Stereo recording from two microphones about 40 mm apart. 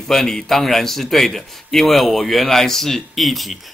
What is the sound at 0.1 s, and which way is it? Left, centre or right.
A man's voice, centre.